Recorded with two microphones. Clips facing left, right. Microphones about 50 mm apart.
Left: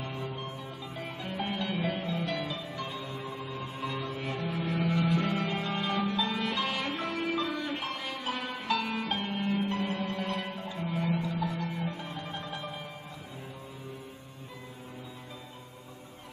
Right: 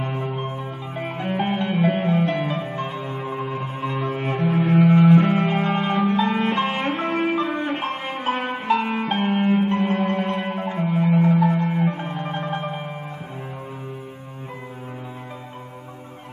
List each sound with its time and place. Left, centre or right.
0.0 s music: right